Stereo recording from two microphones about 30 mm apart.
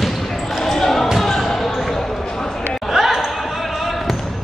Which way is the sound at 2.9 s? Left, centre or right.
Centre.